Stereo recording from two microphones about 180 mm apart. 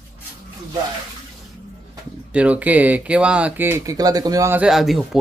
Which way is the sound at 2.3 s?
5° right (ahead or behind).